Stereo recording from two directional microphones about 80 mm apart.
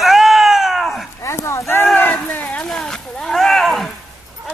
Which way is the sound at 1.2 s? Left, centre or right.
Left.